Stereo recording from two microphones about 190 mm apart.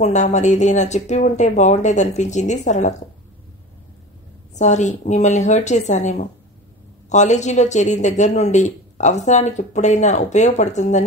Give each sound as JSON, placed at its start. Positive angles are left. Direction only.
{"t": 0.0, "sound": "speech", "side_deg": 40}
{"t": 4.6, "sound": "speech", "side_deg": 40}